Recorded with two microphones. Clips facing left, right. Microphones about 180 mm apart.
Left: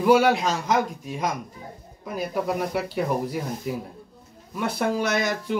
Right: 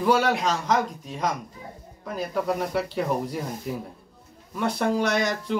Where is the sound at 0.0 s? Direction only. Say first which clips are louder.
Left 3 dB; 10° left (ahead or behind).